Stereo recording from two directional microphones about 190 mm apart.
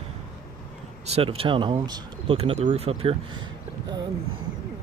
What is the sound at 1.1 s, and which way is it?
Speech, 30° right (ahead or behind).